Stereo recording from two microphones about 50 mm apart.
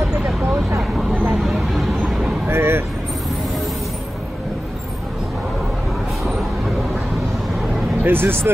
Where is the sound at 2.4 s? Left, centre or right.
Right.